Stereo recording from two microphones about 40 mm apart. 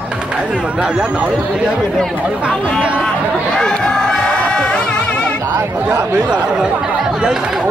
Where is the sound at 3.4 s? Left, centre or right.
Centre.